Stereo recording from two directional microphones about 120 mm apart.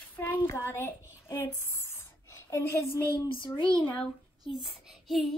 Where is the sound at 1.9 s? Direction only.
20° left (ahead or behind).